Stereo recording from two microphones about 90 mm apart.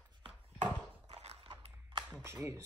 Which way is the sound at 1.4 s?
70° right (ahead or behind).